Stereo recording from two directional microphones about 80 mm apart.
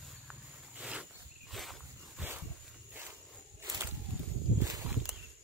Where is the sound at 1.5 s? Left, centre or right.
Centre.